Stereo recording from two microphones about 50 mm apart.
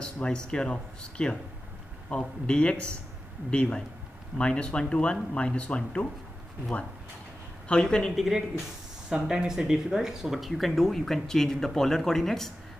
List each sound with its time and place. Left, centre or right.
0.0 s a sound: centre
0.5 s speech: centre
7.6 s speech: centre
9.1 s speech: centre